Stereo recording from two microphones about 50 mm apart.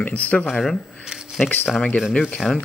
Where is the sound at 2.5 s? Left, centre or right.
Centre.